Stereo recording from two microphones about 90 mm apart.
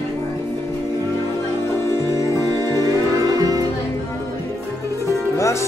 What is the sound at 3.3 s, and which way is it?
Music, 40° right (ahead or behind).